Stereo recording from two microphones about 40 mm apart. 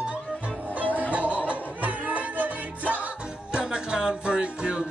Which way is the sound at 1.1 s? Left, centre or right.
Right.